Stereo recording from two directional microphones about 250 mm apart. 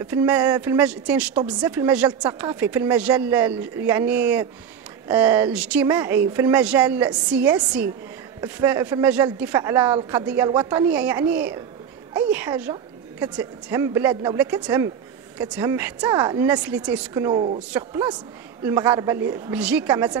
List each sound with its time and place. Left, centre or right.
0.0 s a woman's voice: centre